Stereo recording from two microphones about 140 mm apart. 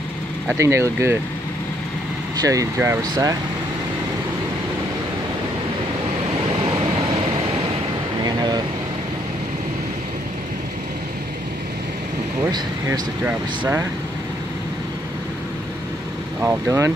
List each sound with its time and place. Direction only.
0.6 s speech: 20° right (ahead or behind)
2.4 s speech: 25° right (ahead or behind)
12.4 s speech: 30° right (ahead or behind)
13.2 s speech: 15° right (ahead or behind)
16.4 s speech: 20° right (ahead or behind)